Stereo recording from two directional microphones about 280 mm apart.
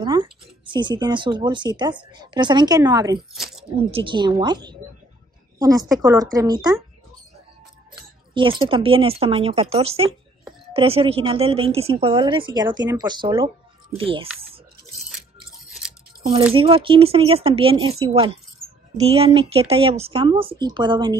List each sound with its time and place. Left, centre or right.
0.0 s speech: centre
3.2 s speech: centre
3.7 s speech: centre
8.4 s speech: centre
16.2 s speech: right